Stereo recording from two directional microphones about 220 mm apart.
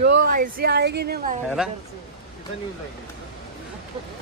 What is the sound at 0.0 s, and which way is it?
Speech, 45° right (ahead or behind).